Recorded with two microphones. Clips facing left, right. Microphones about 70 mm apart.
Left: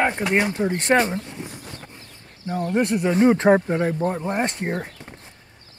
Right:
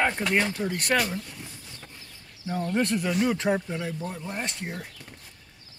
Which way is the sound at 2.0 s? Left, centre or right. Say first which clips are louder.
Left 3 dB; left.